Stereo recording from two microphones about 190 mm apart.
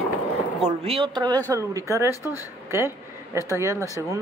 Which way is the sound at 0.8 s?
30° right (ahead or behind).